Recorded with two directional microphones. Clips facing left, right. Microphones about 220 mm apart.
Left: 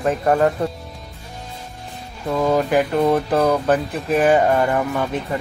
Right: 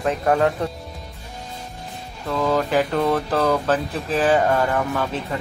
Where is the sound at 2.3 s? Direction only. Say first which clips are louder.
Left 3 dB; 20° left (ahead or behind).